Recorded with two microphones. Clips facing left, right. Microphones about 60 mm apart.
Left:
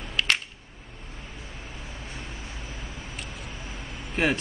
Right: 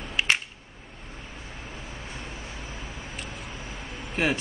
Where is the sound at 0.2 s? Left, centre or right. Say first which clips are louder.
Right 1 dB; centre.